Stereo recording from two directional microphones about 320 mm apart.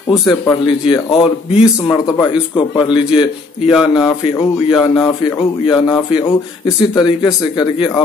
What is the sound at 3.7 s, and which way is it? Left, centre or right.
Speech, centre.